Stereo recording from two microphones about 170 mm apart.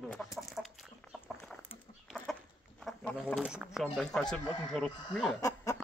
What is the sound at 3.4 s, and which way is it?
Speech, 5° right (ahead or behind).